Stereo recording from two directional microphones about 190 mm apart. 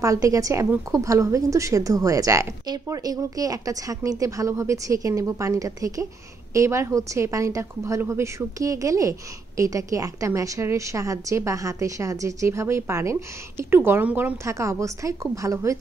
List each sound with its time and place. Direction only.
0.0 s a woman's voice: 15° right (ahead or behind)